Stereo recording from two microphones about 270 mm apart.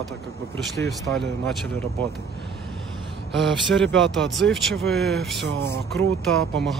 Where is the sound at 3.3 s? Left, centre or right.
Centre.